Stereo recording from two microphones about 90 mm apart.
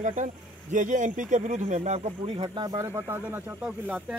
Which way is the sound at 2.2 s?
60° right (ahead or behind).